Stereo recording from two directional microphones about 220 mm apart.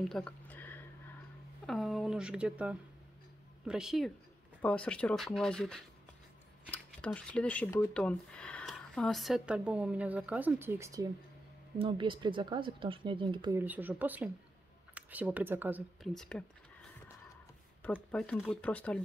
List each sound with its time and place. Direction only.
0.0 s a sound: 5° left (ahead or behind)
1.7 s speech: centre (ahead or behind); by 13.6 s 20° right (ahead or behind)
13.6 s speech: 10° right (ahead or behind)
17.9 s speech: centre (ahead or behind)